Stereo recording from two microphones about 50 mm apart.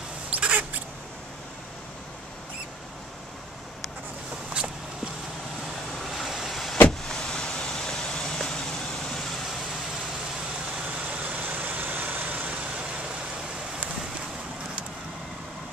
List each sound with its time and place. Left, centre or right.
0.4 s rodents: right
6.0 s vehicle: centre
7.1 s vehicle: centre
11.1 s vehicle: right